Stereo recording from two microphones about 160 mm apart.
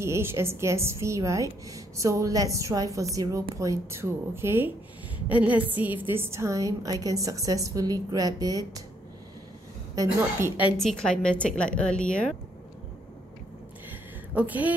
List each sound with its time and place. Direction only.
0.0 s a woman's voice: 15° right (ahead or behind)
9.9 s a woman's voice: 15° right (ahead or behind)
10.8 s speech: 5° left (ahead or behind)
14.3 s a woman's voice: 10° right (ahead or behind)